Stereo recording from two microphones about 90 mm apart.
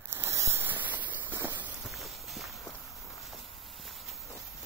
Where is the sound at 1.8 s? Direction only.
Centre (ahead or behind).